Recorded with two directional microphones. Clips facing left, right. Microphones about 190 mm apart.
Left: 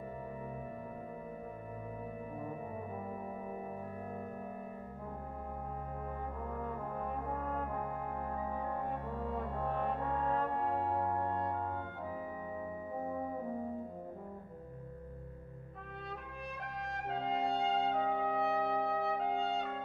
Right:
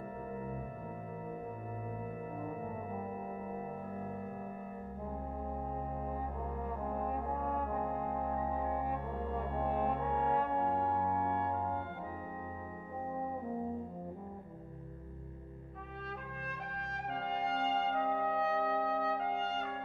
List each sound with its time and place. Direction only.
8.2 s music: 15° right (ahead or behind)
16.8 s trumpet: centre (ahead or behind)